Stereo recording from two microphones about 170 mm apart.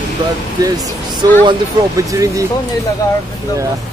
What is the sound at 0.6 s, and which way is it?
Speech, 20° right (ahead or behind).